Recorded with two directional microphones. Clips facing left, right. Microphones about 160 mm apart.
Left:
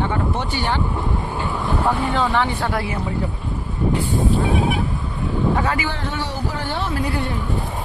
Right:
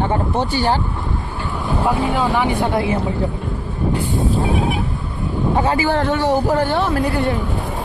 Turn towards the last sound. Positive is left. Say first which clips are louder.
# right 9 dB
turn(degrees=-50)  # may be behind; listen again after turning